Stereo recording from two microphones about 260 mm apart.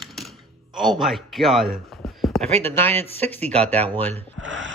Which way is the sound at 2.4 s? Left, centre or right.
Right.